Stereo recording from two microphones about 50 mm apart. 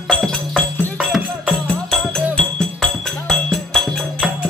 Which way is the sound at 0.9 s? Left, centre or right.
Centre.